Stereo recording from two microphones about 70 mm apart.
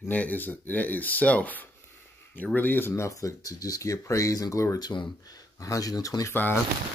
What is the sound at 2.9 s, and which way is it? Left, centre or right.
Speech, left.